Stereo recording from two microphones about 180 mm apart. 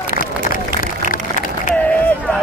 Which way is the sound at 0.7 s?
50° left (ahead or behind).